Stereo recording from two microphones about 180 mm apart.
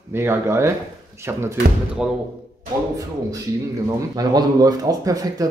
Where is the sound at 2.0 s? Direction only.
5° right (ahead or behind).